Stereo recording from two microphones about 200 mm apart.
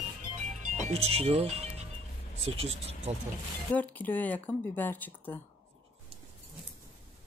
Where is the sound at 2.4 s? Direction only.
30° right (ahead or behind).